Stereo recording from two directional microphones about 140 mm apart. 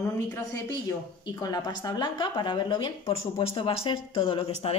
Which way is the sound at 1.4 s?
30° left (ahead or behind).